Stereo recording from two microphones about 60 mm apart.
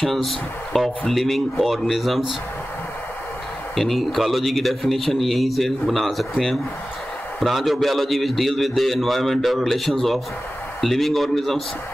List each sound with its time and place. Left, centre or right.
0.0 s a man's voice: centre
3.7 s a man's voice: centre